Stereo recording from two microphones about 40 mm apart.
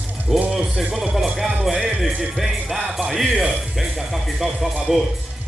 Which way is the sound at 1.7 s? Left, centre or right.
Centre.